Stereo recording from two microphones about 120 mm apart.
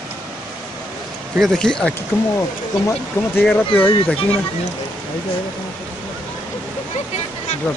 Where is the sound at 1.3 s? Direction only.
Centre (ahead or behind).